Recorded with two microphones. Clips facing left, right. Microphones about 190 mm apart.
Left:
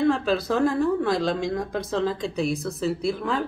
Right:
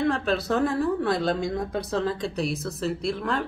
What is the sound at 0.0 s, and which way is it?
A woman's voice, centre (ahead or behind).